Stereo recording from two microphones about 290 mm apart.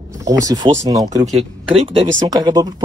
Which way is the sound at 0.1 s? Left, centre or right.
Centre.